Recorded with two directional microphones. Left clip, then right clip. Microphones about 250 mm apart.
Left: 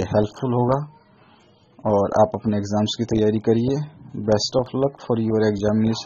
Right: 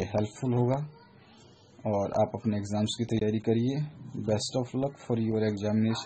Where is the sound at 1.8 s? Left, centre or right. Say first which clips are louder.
Left 10 dB; left.